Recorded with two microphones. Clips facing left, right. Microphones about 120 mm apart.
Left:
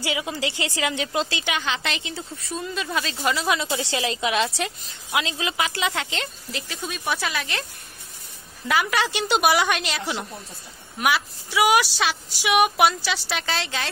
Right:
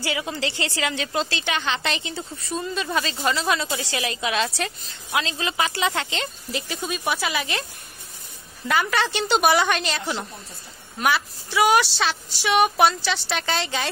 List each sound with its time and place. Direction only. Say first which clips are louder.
0.0 s speech: even; 15° left (ahead or behind)
1.6 s a woman's voice: right 2 dB; centre (ahead or behind)
8.6 s a woman's voice: even; 5° left (ahead or behind)